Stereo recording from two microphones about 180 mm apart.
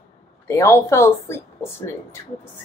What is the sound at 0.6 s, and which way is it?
A woman's voice, 15° left (ahead or behind).